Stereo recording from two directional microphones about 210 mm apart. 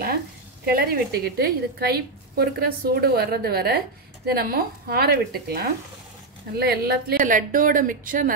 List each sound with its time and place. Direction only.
0.7 s a woman's voice: 45° right (ahead or behind)